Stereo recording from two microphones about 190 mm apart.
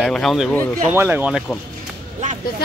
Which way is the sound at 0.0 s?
Centre (ahead or behind).